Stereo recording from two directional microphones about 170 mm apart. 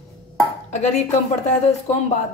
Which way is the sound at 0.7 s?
40° left (ahead or behind).